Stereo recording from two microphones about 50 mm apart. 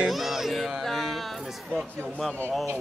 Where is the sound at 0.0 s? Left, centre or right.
Centre.